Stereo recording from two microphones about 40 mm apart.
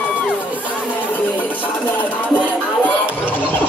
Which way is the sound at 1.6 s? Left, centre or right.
Left.